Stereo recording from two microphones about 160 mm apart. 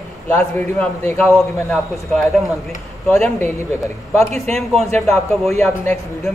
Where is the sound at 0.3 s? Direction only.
10° left (ahead or behind).